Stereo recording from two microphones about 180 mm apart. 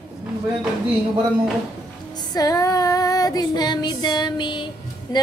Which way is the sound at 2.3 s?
20° left (ahead or behind).